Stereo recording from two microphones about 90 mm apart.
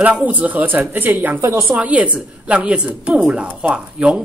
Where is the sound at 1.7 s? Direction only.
15° right (ahead or behind).